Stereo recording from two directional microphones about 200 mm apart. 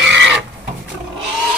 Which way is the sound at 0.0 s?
60° right (ahead or behind).